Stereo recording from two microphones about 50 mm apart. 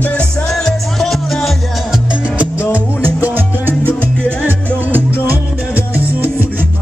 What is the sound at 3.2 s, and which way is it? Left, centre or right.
Salsa music, right.